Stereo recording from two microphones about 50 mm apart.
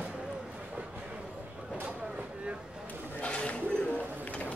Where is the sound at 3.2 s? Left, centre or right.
Left.